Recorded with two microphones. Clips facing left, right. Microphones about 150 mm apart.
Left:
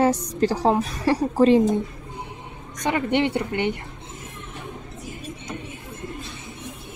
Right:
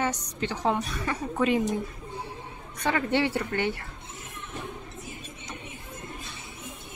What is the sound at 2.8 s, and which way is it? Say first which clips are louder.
Speech: left 4 dB; 20° left (ahead or behind).